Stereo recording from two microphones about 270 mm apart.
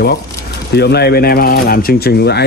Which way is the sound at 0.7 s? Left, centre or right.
Left.